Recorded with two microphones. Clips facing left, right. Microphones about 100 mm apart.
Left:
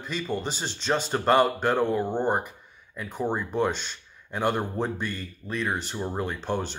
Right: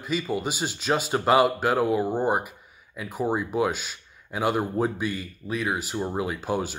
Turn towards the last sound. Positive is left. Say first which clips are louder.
# right 2 dB
turn(degrees=-5)  # may be behind; listen again after turning